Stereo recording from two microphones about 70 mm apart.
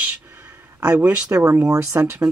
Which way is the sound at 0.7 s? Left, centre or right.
Right.